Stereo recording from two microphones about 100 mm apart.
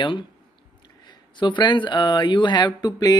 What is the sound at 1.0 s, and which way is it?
Speech, 50° left (ahead or behind).